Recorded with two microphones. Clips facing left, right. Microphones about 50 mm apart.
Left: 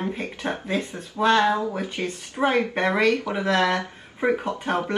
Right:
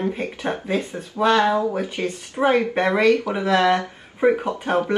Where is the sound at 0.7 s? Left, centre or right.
Right.